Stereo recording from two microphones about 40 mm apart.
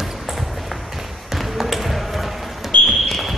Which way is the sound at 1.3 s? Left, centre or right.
Centre.